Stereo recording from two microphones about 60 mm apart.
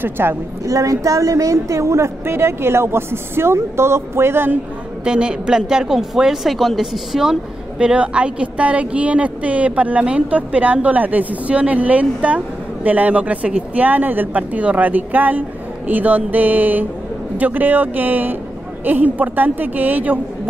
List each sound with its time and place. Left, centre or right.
0.0 s speech: right
0.7 s a woman's voice: right
5.0 s speech: centre
7.8 s speech: centre